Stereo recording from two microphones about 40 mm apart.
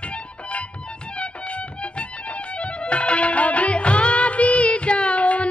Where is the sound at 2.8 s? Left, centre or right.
Left.